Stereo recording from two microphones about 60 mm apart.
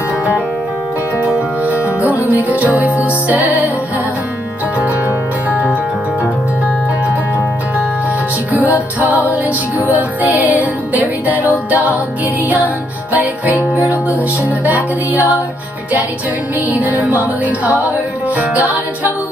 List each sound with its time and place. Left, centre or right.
1.2 s music: right
4.7 s music: right
8.5 s music: right
13.6 s music: left
14.6 s music: right
16.7 s music: right